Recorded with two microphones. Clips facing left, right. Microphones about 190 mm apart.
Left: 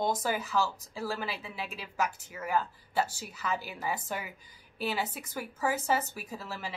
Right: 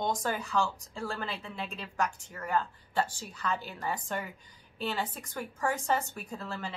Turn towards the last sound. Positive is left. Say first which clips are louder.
# right 1 dB
turn(degrees=5)  # may be behind; listen again after turning